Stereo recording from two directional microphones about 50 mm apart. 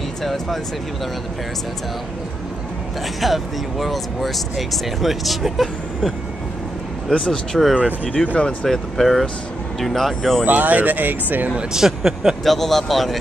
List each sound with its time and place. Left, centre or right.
0.2 s speech: centre
3.2 s speech: centre
7.1 s speech: centre
10.4 s speech: right
11.7 s speech: centre
12.4 s speech: centre